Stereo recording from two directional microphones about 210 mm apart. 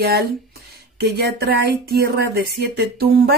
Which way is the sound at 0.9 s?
50° right (ahead or behind).